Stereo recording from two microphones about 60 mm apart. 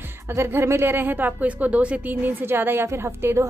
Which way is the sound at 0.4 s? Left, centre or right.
Right.